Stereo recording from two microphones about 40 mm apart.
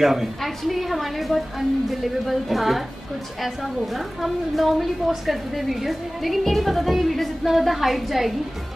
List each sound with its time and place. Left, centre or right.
0.0 s a woman's voice: centre